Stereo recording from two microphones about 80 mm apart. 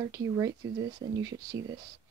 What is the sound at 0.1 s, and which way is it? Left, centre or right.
Speech, right.